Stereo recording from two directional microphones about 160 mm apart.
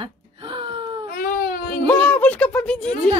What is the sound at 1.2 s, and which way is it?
Baby cry, 65° left (ahead or behind).